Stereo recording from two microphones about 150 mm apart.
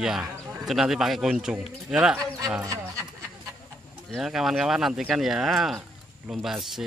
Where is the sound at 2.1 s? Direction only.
20° right (ahead or behind).